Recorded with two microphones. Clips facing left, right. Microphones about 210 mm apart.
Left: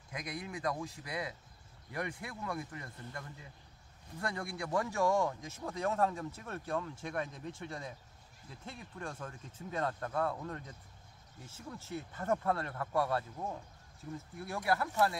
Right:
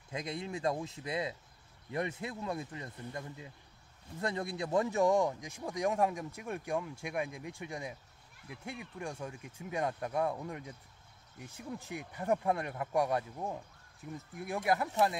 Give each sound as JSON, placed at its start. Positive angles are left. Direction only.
{"t": 0.1, "sound": "speech", "side_deg": -25}